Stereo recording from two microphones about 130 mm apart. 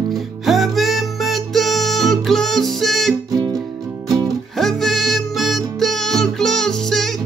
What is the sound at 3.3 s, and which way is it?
Music, 30° right (ahead or behind).